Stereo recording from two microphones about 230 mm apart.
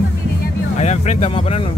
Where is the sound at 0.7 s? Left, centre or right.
Left.